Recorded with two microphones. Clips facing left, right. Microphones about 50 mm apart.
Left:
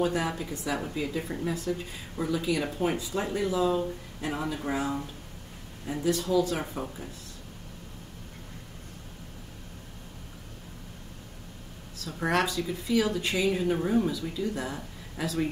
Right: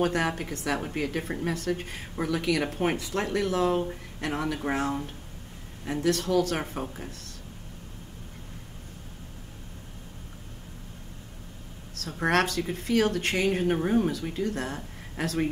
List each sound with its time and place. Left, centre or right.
0.0 s speech: right
4.7 s speech: right
6.0 s speech: right
11.9 s a sound: right
12.3 s speech: right